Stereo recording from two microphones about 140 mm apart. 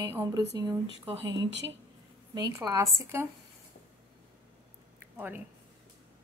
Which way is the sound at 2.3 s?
30° right (ahead or behind).